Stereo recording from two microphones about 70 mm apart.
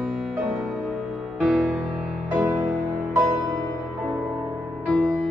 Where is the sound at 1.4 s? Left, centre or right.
Centre.